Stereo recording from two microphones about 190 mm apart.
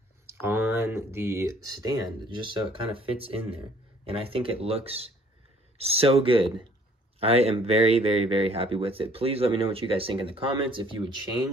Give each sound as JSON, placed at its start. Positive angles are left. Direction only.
{"t": 0.3, "sound": "speech", "side_deg": -10}